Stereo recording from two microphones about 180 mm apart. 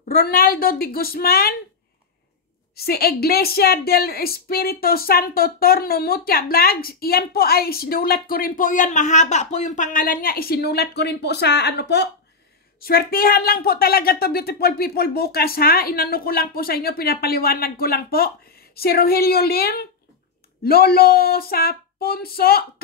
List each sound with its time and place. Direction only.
0.0 s a woman's voice: 55° left (ahead or behind)
2.7 s a woman's voice: 60° left (ahead or behind)
12.8 s a woman's voice: 55° left (ahead or behind)